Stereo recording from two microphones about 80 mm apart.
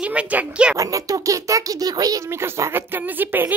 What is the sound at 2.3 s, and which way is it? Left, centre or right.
Speech, right.